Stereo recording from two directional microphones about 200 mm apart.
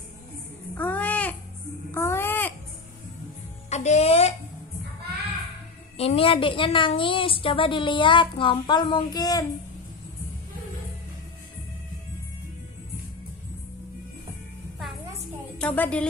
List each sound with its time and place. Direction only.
0.7 s babbling: 10° left (ahead or behind)
3.7 s speech: 35° left (ahead or behind)
5.9 s a woman's voice: 30° left (ahead or behind)
15.6 s a woman's voice: 5° left (ahead or behind)